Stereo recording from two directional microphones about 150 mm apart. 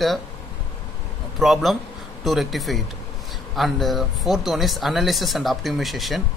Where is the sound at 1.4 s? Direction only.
Centre (ahead or behind).